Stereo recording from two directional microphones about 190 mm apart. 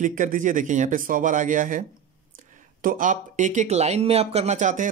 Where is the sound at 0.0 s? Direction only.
45° right (ahead or behind).